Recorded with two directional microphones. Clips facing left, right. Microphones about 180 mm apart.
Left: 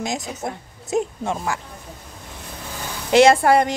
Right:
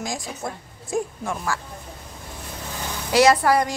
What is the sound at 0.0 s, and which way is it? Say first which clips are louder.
A woman's voice: left 3 dB; 20° left (ahead or behind).